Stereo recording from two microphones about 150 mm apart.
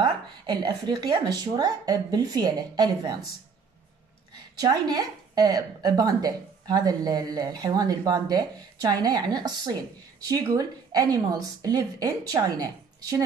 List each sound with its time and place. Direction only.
0.0 s a woman's voice: 30° right (ahead or behind)
4.6 s a woman's voice: 25° right (ahead or behind)